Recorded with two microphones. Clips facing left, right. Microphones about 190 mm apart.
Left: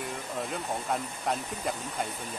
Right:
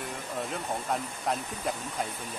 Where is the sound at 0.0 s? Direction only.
Centre (ahead or behind).